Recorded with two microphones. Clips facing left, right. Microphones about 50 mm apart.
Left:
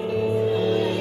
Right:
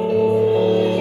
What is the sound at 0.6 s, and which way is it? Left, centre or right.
Music, right.